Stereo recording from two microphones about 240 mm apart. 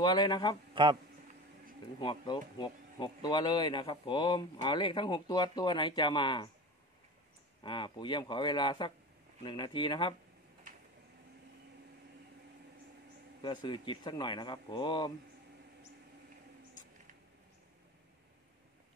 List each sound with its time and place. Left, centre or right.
0.0 s a man's voice: centre
2.0 s speech: centre
7.6 s speech: centre
13.4 s speech: centre